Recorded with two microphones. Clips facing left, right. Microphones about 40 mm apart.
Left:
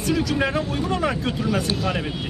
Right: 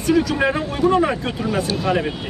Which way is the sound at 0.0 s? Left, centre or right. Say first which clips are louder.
Right 4 dB; centre.